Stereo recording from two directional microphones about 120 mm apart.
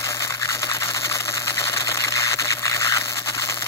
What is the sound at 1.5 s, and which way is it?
Camera, 25° left (ahead or behind).